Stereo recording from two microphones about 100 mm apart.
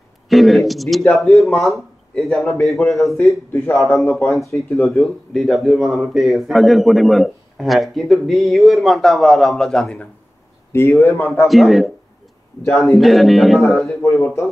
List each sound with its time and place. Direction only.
0.3 s speech: centre (ahead or behind)
3.5 s speech: 25° left (ahead or behind)
3.8 s speech: centre (ahead or behind)
10.7 s speech: 25° left (ahead or behind)
11.4 s speech: centre (ahead or behind)
13.8 s speech: 25° left (ahead or behind)